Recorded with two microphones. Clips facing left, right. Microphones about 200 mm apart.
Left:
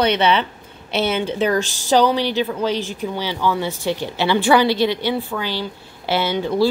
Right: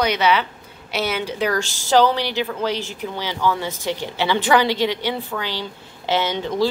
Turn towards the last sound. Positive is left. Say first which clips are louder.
# left 3 dB
turn(degrees=10)  # may be behind; listen again after turning